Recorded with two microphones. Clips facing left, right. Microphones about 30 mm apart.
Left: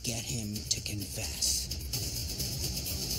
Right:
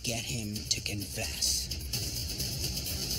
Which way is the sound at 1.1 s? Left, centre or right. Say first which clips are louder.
Right 1 dB; right.